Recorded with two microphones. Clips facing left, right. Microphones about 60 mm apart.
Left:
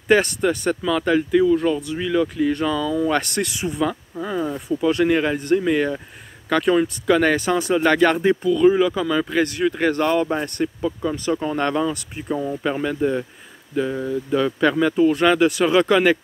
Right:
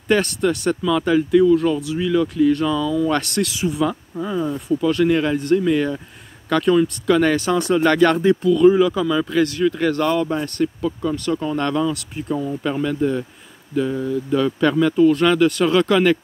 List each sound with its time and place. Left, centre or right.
0.1 s speech: centre
2.7 s speech: left
3.1 s speech: centre
4.2 s speech: centre
9.0 s speech: left
10.8 s speech: centre
11.2 s speech: left